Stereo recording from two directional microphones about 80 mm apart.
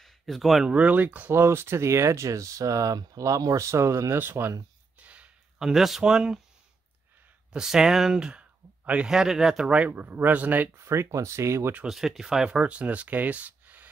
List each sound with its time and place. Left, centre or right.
0.0 s a sound: centre
0.7 s speech: centre
4.9 s a sound: centre
5.6 s speech: centre
7.5 s speech: centre
9.7 s speech: centre
10.8 s speech: right
11.9 s speech: centre; by 13.8 s right